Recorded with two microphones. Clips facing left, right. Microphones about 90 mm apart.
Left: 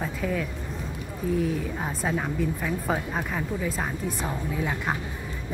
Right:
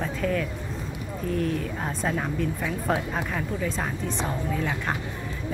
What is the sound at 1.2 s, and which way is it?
A woman's voice, 5° left (ahead or behind).